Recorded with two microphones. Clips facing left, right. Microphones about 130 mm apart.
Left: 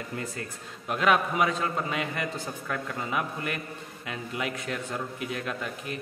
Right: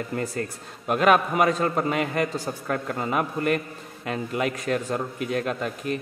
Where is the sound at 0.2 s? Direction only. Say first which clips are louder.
Right 7 dB; 50° right (ahead or behind).